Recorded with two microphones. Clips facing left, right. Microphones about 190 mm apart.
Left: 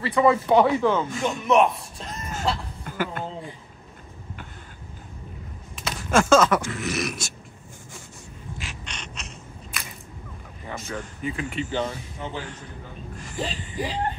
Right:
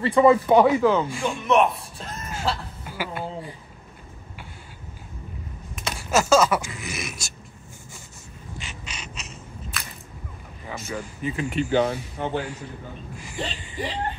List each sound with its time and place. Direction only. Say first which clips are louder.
0.0 s speech: right 3 dB; 25° right (ahead or behind)
0.6 s speech: right 2 dB; 5° right (ahead or behind)
1.5 s a sound: even; centre (ahead or behind)
5.8 s a sound: left 1 dB; 5° right (ahead or behind)
8.5 s crow: right 1 dB; centre (ahead or behind)
10.7 s speech: right 1 dB; 5° right (ahead or behind)
11.7 s speech: right 6 dB; 60° right (ahead or behind)
13.1 s speech: even; 10° right (ahead or behind)
13.4 s speech: left 1 dB; 5° left (ahead or behind)